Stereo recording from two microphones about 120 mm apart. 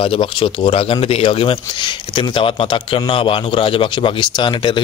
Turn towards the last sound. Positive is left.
turn(degrees=40)  # may be behind; listen again after turning